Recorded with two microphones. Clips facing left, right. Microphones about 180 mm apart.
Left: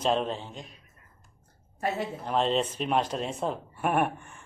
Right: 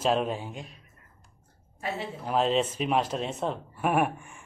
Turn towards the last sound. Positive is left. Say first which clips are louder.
# right 1 dB
turn(degrees=0)  # may be behind; listen again after turning